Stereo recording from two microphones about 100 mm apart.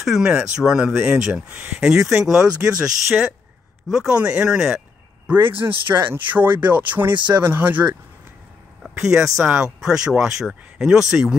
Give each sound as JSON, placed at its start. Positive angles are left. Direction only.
{"t": 0.0, "sound": "speech", "side_deg": -5}
{"t": 1.5, "sound": "speech", "side_deg": -15}
{"t": 1.8, "sound": "speech", "side_deg": -5}
{"t": 5.9, "sound": "speech", "side_deg": -20}
{"t": 9.0, "sound": "speech", "side_deg": -5}